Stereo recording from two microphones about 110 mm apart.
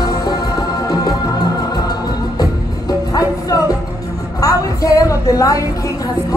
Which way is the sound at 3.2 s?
30° left (ahead or behind).